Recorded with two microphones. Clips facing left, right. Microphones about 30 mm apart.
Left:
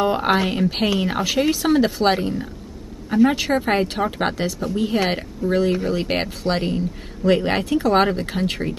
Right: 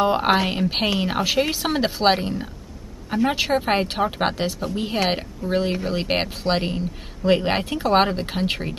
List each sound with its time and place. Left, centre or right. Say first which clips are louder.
0.0 s a woman's voice: even; centre